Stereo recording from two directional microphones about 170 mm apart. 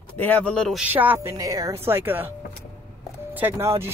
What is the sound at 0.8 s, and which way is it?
A woman's voice, 10° right (ahead or behind).